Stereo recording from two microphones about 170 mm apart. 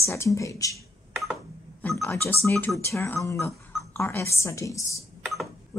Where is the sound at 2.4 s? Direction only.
10° left (ahead or behind).